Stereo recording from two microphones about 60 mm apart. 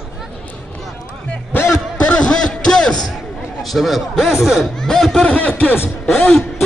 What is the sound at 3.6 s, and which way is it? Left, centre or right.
A man's voice, centre.